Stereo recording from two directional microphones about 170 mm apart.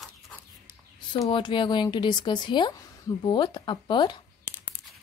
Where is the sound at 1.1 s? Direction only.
25° left (ahead or behind).